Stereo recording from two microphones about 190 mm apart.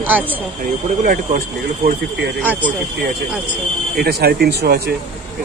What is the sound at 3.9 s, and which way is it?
Speech, 55° right (ahead or behind).